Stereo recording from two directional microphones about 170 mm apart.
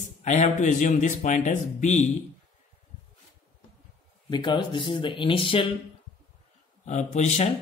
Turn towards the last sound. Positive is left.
turn(degrees=45)  # may be behind; listen again after turning